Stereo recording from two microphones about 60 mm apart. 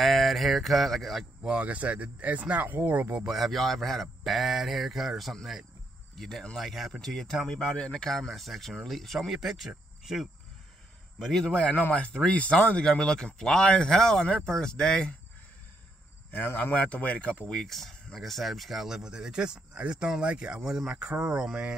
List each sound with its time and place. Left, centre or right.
0.0 s speech: centre
1.4 s speech: right
3.3 s a man's voice: centre
11.4 s speech: centre
16.5 s speech: left; by 21.5 s centre